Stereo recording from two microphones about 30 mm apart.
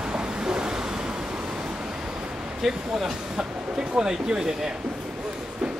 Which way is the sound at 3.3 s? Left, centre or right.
Right.